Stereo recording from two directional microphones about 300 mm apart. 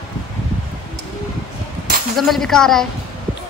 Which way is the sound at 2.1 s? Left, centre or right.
Centre.